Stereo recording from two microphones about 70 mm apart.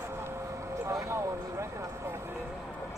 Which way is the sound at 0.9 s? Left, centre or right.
Right.